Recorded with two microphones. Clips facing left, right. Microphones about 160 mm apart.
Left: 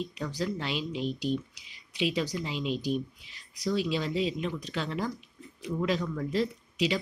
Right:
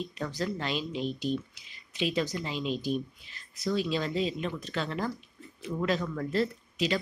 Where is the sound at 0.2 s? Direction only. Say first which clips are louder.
Right 1 dB; 10° left (ahead or behind).